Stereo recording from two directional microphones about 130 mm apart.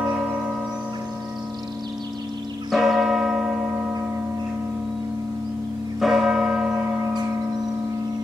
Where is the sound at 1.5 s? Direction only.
30° right (ahead or behind).